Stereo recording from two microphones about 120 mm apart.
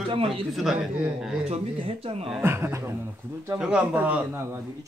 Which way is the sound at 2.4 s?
20° right (ahead or behind).